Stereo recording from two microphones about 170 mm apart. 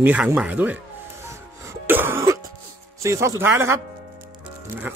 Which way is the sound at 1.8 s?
10° right (ahead or behind).